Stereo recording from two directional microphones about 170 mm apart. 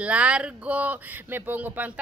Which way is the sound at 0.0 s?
5° right (ahead or behind).